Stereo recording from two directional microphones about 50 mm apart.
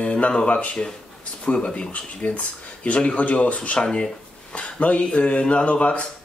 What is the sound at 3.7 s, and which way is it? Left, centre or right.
Speech, centre.